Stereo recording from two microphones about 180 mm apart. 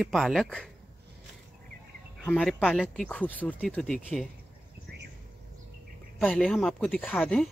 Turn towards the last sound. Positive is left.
turn(degrees=10)  # may be behind; listen again after turning